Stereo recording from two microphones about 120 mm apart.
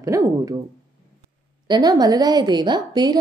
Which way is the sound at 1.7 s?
35° right (ahead or behind).